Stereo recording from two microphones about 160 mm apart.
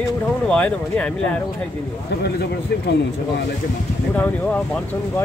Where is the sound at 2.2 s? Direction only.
90° left.